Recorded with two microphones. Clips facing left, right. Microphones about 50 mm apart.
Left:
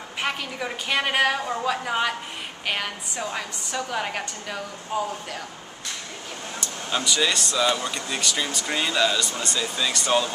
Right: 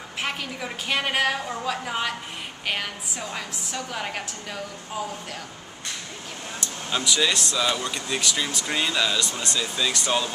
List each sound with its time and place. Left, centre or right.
0.2 s speech: centre
6.6 s speech: centre